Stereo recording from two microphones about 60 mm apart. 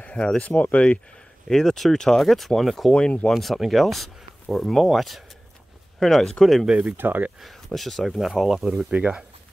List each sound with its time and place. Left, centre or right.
0.0 s speech: centre
1.5 s speech: centre
2.9 s speech: centre
3.3 s speech: centre
6.6 s speech: centre
7.0 s speech: right
7.4 s speech: centre